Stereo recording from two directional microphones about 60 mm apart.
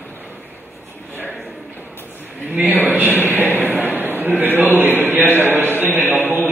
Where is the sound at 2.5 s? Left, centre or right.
Right.